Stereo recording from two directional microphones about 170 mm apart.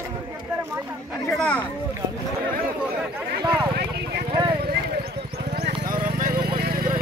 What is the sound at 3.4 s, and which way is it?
Speech, 25° right (ahead or behind).